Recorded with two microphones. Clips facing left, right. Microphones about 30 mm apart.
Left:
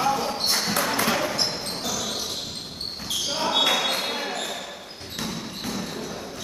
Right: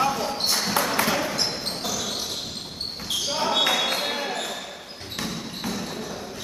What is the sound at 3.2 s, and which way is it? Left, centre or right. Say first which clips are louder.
Basketball bounce: even; centre.